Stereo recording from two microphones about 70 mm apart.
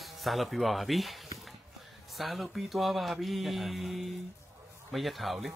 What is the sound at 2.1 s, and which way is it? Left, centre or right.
Speech, centre.